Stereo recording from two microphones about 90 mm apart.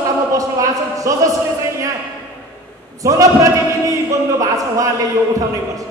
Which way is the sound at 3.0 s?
40° right (ahead or behind).